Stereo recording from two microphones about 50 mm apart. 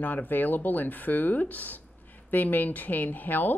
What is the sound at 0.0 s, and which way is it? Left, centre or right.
Speech, left.